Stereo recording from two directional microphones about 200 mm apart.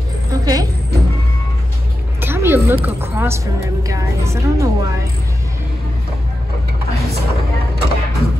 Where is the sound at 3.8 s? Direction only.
15° right (ahead or behind).